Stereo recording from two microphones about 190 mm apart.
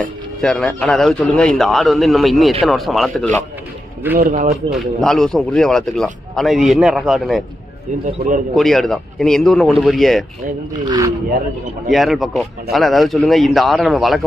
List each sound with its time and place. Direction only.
0.0 s a man's voice: 5° left (ahead or behind)
4.2 s speech: 45° right (ahead or behind)
4.6 s a man's voice: centre (ahead or behind)
8.2 s a man's voice: 55° right (ahead or behind)
8.5 s a man's voice: centre (ahead or behind)
11.9 s a man's voice: centre (ahead or behind)